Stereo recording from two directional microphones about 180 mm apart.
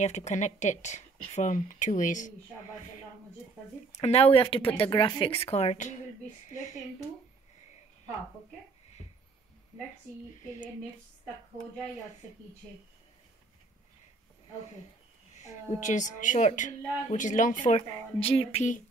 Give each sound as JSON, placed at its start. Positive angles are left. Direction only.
{"t": 0.0, "sound": "a woman's voice", "side_deg": 40}
{"t": 3.9, "sound": "a woman's voice", "side_deg": 35}
{"t": 15.8, "sound": "a woman's voice", "side_deg": 45}